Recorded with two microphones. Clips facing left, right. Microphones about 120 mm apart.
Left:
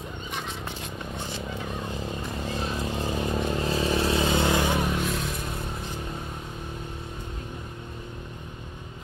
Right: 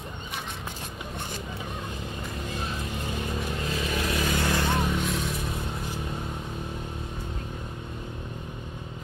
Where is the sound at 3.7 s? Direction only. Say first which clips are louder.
Left 4 dB; 30° left (ahead or behind); by 5.6 s centre (ahead or behind).